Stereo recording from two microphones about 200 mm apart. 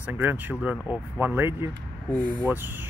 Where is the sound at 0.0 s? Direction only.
10° right (ahead or behind).